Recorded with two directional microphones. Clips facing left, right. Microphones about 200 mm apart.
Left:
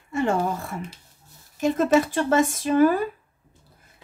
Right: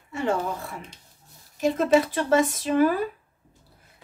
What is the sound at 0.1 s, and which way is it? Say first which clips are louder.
A woman's voice: left 3 dB; 50° left (ahead or behind).